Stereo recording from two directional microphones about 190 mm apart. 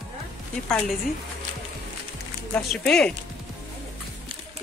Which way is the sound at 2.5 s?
5° left (ahead or behind).